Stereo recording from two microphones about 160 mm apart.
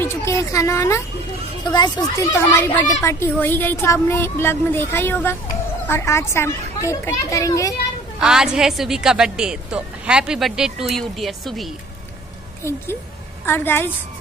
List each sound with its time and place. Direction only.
0.0 s a sound: 20° left (ahead or behind)
1.7 s a child's voice: 25° left (ahead or behind)
8.2 s a woman's voice: 5° right (ahead or behind)
13.5 s speech: 15° left (ahead or behind)